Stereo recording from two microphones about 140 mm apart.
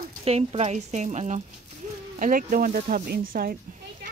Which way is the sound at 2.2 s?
85° right.